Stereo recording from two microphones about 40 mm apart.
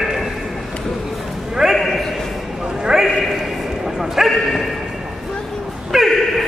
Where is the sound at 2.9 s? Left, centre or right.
Centre.